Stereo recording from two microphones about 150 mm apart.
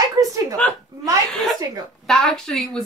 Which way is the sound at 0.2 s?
20° right (ahead or behind).